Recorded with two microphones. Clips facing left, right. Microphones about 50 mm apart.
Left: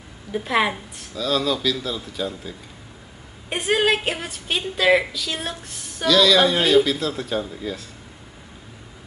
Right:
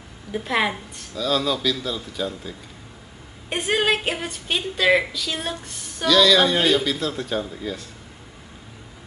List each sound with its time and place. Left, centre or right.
0.3 s a woman's voice: centre